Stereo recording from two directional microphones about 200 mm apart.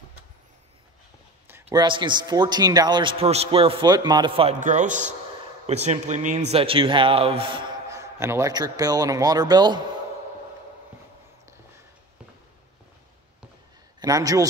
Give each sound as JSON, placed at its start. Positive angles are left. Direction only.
{"t": 1.5, "sound": "a man's voice", "side_deg": -20}
{"t": 4.6, "sound": "a man's voice", "side_deg": -40}
{"t": 7.9, "sound": "a man's voice", "side_deg": -15}
{"t": 13.9, "sound": "a man's voice", "side_deg": -20}